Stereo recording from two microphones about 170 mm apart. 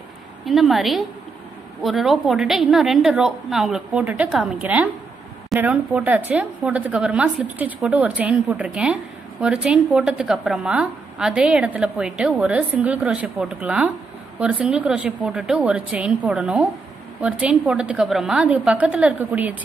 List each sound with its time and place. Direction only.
0.5 s a woman's voice: centre (ahead or behind)